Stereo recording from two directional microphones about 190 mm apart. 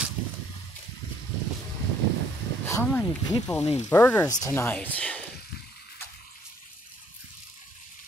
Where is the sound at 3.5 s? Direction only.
35° left (ahead or behind).